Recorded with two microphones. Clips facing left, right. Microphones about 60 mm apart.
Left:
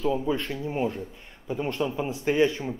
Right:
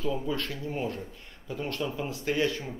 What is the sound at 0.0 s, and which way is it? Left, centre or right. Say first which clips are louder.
A man's voice: left 5 dB; left.